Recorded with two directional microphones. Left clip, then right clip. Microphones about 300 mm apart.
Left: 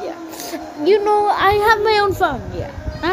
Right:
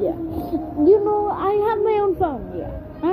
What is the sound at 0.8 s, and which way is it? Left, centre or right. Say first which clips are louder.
A woman's voice: left 3 dB; left.